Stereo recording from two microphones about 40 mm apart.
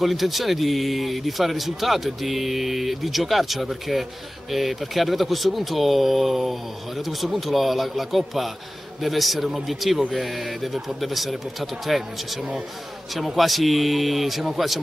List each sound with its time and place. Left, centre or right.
0.0 s speech: centre